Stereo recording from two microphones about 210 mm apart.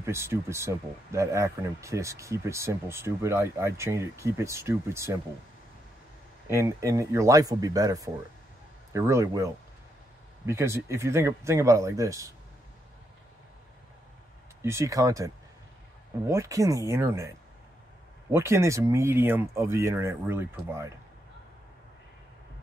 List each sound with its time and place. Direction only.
0.0 s speech: 10° right (ahead or behind)
6.4 s speech: 15° right (ahead or behind)
14.6 s speech: 15° right (ahead or behind)
18.3 s speech: 15° right (ahead or behind)